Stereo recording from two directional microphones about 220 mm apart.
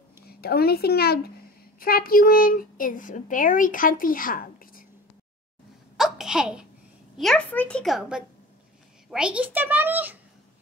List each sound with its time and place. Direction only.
0.3 s a child's voice: 45° left (ahead or behind)
5.9 s babbling: centre (ahead or behind)
7.2 s a woman's voice: 5° left (ahead or behind)